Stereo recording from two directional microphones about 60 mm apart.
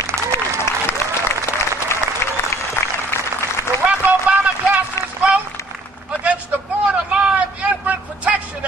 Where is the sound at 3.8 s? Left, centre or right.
Right.